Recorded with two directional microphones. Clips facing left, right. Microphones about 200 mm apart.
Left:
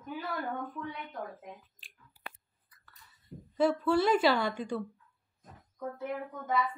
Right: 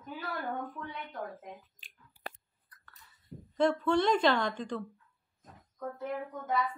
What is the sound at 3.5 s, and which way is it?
Speech, 5° left (ahead or behind).